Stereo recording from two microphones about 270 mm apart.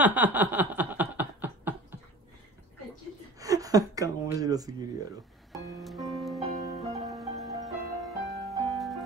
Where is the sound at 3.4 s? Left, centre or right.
Centre.